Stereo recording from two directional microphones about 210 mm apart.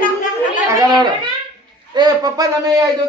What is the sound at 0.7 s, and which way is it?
A child's voice, 20° right (ahead or behind).